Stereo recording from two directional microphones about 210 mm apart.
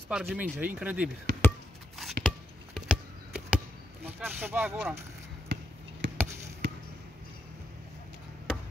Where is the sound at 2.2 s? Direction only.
Centre (ahead or behind).